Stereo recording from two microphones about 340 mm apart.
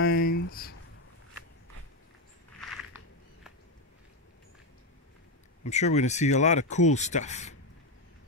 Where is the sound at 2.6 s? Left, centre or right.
Centre.